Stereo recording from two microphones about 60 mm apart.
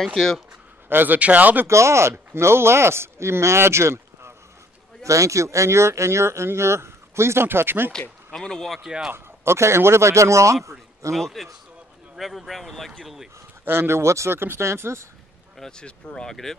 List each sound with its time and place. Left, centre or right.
0.0 s speech: centre
0.8 s speech: right
1.7 s speech: right
5.0 s speech: right
8.3 s speech: centre
9.1 s speech: right
11.1 s speech: centre
13.7 s speech: right
15.8 s speech: centre